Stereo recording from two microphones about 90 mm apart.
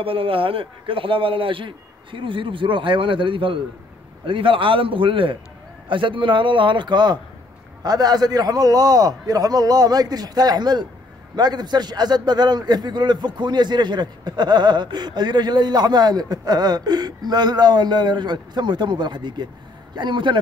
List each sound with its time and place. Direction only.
0.0 s a man's voice: 85° right; by 20.3 s 60° right (ahead or behind)